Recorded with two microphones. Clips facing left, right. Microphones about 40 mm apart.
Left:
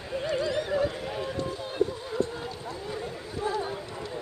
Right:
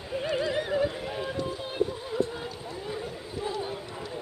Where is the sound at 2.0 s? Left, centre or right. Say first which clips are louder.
Even; centre.